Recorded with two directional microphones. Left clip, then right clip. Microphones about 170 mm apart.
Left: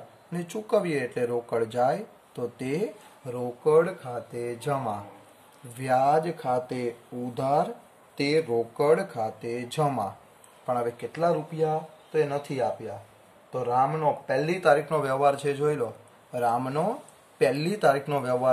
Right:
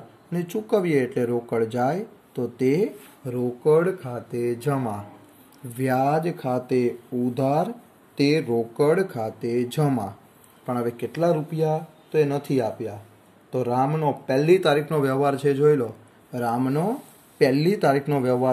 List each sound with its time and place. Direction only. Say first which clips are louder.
0.3 s speech: right 2 dB; 20° right (ahead or behind)
13.5 s speech: right 1 dB; 35° right (ahead or behind); by 18.5 s 20° right (ahead or behind)